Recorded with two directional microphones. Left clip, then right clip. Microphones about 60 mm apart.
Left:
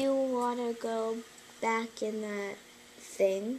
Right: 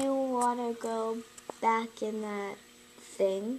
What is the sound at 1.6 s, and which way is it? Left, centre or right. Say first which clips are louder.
Speech: right 3 dB; centre.